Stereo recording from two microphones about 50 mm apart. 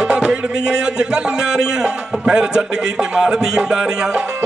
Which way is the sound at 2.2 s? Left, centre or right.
Centre.